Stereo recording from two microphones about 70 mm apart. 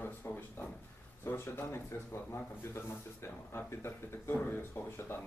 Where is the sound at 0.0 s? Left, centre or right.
Left.